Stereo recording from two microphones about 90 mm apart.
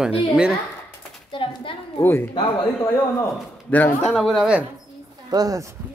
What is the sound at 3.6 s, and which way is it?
Speech, 20° left (ahead or behind).